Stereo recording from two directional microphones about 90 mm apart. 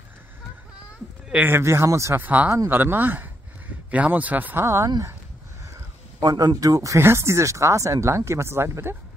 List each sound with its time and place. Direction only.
1.3 s speech: 20° right (ahead or behind)
1.6 s speech: 30° right (ahead or behind)
2.1 s speech: 20° right (ahead or behind)
4.6 s speech: 30° right (ahead or behind)
6.1 s speech: 45° right (ahead or behind); by 8.9 s 30° right (ahead or behind)